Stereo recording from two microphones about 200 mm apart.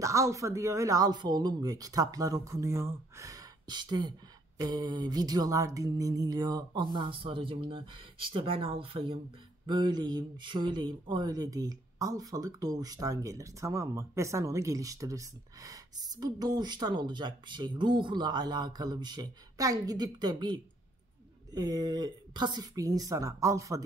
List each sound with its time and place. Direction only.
0.0 s speech: 15° right (ahead or behind)